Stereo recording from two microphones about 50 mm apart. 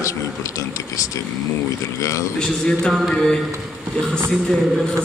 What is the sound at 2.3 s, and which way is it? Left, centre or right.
Speech, centre.